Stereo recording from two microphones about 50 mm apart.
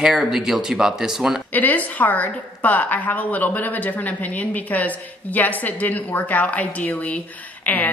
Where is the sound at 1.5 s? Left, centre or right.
Left.